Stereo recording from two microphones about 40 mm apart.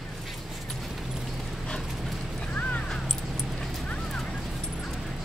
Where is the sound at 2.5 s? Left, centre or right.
Left.